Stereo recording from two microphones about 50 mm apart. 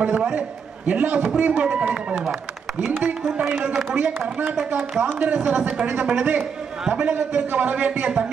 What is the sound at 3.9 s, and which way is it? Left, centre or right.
Speech, right.